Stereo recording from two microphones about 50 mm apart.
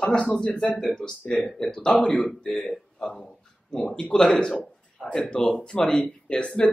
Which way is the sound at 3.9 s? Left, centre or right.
Left.